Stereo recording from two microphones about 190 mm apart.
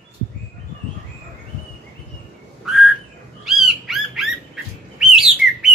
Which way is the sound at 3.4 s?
Centre (ahead or behind).